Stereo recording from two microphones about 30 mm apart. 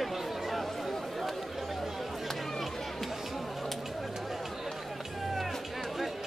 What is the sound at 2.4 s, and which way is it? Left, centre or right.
Run, centre.